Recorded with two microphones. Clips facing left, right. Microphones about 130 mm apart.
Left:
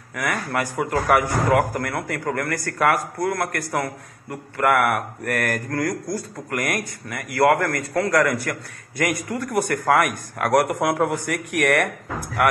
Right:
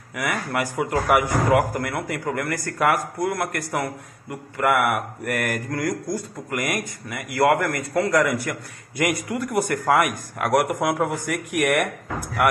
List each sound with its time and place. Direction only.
0.1 s a man's voice: 5° right (ahead or behind)